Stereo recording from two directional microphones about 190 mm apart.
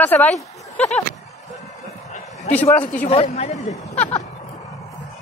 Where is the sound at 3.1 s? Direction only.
30° left (ahead or behind).